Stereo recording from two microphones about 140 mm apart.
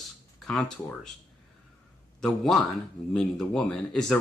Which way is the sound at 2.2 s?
Centre (ahead or behind).